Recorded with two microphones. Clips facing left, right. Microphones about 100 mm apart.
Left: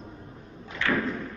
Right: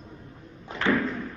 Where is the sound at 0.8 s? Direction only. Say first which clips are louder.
Right 3 dB; 40° right (ahead or behind).